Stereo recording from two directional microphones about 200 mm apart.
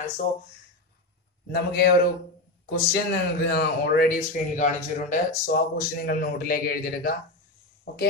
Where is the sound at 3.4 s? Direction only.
55° left (ahead or behind).